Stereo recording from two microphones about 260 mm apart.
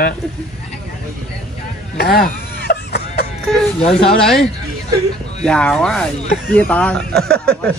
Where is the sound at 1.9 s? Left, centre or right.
Left.